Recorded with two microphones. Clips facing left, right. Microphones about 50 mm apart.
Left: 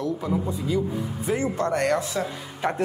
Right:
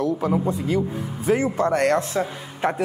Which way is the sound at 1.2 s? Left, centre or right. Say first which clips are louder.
Right 5 dB; right.